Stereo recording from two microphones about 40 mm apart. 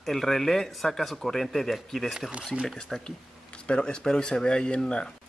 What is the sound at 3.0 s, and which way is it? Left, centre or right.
Speech, left.